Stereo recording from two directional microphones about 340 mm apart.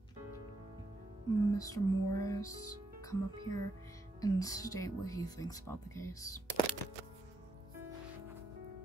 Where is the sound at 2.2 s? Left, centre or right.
Centre.